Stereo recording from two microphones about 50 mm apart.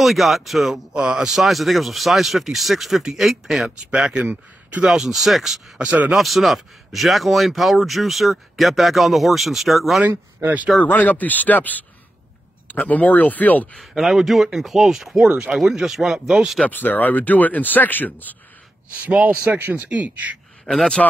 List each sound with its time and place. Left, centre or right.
0.0 s speech: centre
3.7 s speech: centre
5.8 s speech: right
6.1 s speech: centre
10.0 s speech: right
10.9 s speech: left
13.7 s speech: centre
15.2 s speech: centre
15.6 s speech: centre
16.6 s speech: left
19.2 s speech: right
20.6 s a man's voice: centre